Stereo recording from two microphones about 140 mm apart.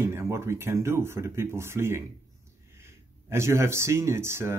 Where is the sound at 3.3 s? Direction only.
20° right (ahead or behind).